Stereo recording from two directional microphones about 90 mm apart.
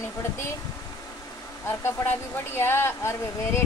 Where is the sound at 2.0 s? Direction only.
25° left (ahead or behind).